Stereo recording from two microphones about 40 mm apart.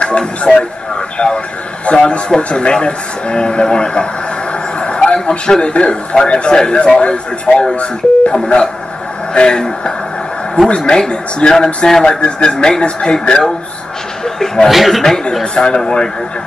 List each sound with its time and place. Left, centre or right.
0.4 s a man's voice: left
7.7 s a man's voice: left
14.2 s a sound: centre
14.7 s speech: centre
15.5 s a man's voice: centre